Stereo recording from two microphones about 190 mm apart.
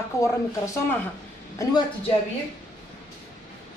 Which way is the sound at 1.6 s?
20° left (ahead or behind).